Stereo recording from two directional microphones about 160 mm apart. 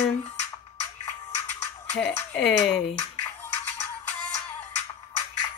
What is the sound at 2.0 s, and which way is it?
Speech, 90° left.